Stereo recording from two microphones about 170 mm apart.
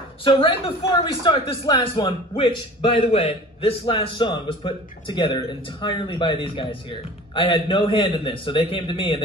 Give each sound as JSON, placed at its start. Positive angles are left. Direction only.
{"t": 0.2, "sound": "speech", "side_deg": 30}